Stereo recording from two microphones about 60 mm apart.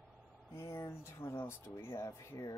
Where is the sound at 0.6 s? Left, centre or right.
Left.